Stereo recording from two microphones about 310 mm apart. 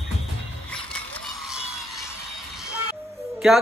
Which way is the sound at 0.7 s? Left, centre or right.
Centre.